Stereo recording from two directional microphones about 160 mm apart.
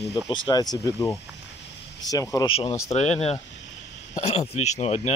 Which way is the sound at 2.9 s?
40° left (ahead or behind).